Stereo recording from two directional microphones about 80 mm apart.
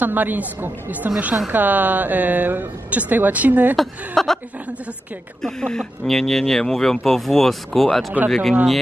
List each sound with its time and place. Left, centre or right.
0.0 s speech: right
3.7 s speech: centre
5.4 s speech: centre